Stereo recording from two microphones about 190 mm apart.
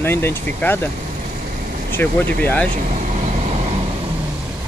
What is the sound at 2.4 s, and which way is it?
Speech, 10° left (ahead or behind).